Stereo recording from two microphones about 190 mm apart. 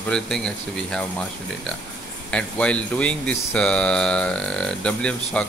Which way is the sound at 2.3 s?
5° left (ahead or behind).